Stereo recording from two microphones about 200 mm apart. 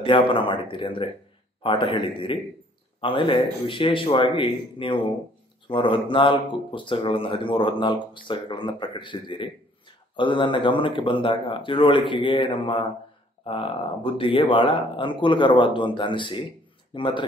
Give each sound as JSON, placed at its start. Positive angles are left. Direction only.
{"t": 0.0, "sound": "speech", "side_deg": 25}